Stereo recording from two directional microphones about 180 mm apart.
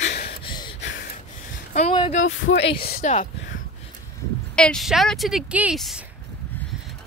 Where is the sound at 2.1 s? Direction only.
45° left (ahead or behind).